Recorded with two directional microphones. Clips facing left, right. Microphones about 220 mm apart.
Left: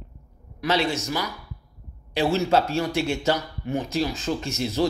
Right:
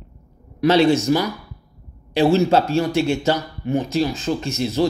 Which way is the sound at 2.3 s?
25° right (ahead or behind).